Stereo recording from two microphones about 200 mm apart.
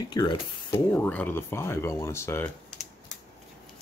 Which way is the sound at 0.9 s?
10° left (ahead or behind).